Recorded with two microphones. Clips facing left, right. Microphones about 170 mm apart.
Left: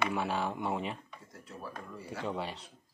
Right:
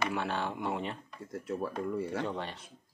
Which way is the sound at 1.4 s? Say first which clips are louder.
Right 10 dB; 60° right (ahead or behind).